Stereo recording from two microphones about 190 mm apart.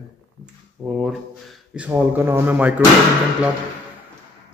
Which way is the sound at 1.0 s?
Centre (ahead or behind).